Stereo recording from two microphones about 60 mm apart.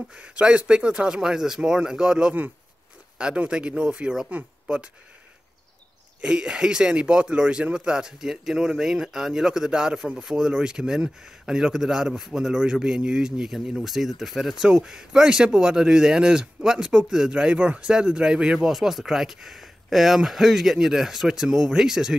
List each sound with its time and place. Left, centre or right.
0.1 s speech: centre
6.2 s speech: centre